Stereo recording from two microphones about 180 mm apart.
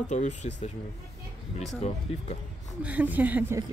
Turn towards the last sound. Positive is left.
turn(degrees=-10)  # may be behind; listen again after turning